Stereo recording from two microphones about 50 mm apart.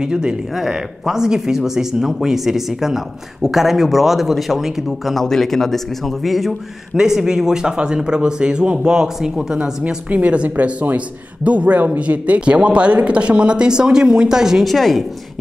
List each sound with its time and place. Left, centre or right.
0.0 s speech: centre
5.2 s speech: centre
7.0 s speech: centre
10.0 s speech: right; by 14.7 s centre
14.7 s speech: centre